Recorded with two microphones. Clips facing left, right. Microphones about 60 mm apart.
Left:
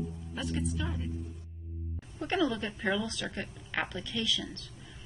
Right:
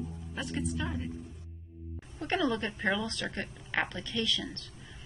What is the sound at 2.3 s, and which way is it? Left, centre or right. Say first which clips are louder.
Speech: even; centre.